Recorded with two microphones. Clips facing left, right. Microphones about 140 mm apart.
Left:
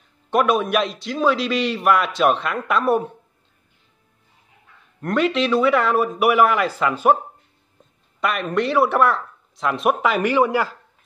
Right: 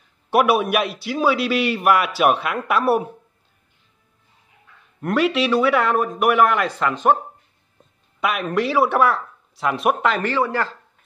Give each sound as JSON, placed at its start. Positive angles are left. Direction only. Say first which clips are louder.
{"t": 0.3, "sound": "a man's voice", "louder": "right 1 dB", "side_deg": -10}
{"t": 5.0, "sound": "speech", "louder": "even", "side_deg": -5}
{"t": 8.2, "sound": "speech", "louder": "even", "side_deg": 0}